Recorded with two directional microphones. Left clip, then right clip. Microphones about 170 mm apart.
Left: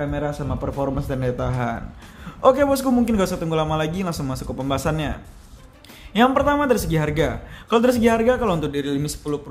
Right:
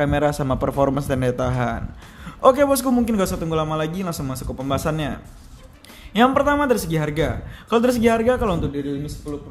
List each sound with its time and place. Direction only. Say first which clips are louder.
0.0 s a man's voice: right 6 dB; 20° right (ahead or behind); by 5.1 s centre (ahead or behind)
6.1 s a man's voice: right 1 dB; centre (ahead or behind)